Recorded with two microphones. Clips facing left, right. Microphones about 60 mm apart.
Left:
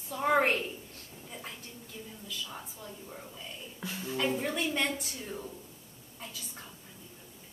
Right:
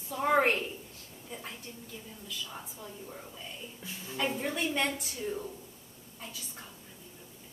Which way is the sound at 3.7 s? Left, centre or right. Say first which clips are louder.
Left 5 dB; left.